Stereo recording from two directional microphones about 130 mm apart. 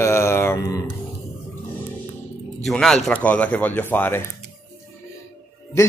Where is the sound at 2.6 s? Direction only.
5° left (ahead or behind).